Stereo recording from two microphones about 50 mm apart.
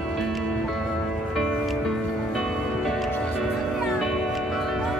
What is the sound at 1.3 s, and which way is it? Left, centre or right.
Music, centre.